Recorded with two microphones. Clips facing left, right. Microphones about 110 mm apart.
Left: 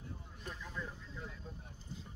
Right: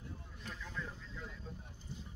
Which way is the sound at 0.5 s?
10° left (ahead or behind).